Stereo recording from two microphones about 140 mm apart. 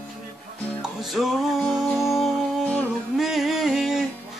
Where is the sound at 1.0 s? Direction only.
Centre (ahead or behind).